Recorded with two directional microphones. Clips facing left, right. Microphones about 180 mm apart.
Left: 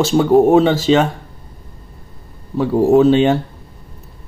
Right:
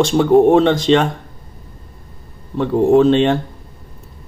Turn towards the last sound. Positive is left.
turn(degrees=5)  # may be behind; listen again after turning